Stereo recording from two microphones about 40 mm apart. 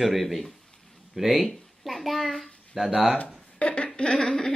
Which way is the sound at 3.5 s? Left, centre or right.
Left.